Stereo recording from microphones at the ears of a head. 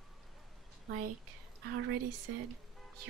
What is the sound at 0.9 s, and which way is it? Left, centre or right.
Speech, right.